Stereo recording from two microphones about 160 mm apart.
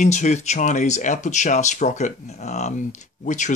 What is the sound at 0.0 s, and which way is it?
Speech, 50° left (ahead or behind).